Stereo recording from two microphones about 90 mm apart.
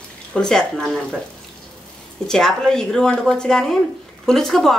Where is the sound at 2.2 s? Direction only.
5° left (ahead or behind).